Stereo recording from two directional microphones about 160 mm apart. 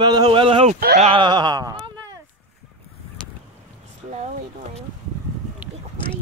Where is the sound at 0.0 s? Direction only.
25° right (ahead or behind).